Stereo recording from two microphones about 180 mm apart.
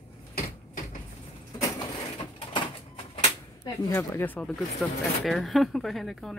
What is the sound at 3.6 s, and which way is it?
Speech, 20° left (ahead or behind).